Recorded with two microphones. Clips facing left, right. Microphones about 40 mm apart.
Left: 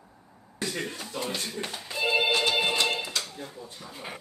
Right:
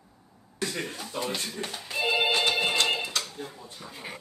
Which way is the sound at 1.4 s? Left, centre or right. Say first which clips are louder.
Even; centre.